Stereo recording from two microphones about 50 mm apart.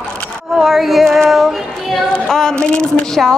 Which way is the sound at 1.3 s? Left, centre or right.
Centre.